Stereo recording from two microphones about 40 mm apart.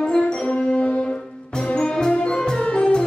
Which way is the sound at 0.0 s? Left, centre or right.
Centre.